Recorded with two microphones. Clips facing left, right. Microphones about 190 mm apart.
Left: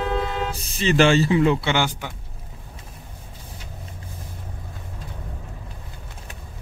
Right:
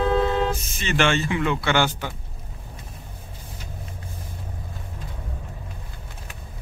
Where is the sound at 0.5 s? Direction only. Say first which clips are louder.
Left 5 dB; 35° left (ahead or behind).